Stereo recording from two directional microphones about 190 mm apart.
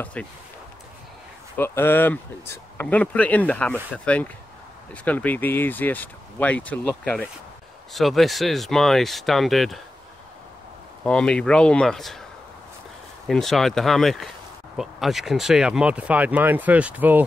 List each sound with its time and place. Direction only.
0.0 s speech: 5° left (ahead or behind)
1.6 s speech: 10° left (ahead or behind)
11.1 s speech: 5° left (ahead or behind)
13.3 s speech: centre (ahead or behind)